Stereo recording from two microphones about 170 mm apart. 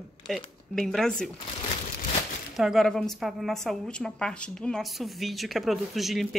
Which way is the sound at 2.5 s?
Centre (ahead or behind).